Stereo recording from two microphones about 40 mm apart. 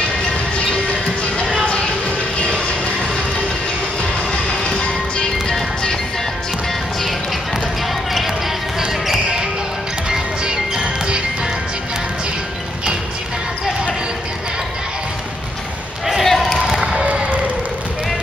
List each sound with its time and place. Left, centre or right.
1.7 s music: left
2.5 s vehicle: left
4.0 s music: left
10.0 s music: centre
16.3 s basketball bounce: centre
16.5 s basketball bounce: centre
17.0 s basketball bounce: right